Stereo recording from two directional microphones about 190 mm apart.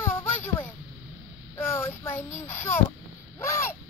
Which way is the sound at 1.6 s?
10° left (ahead or behind).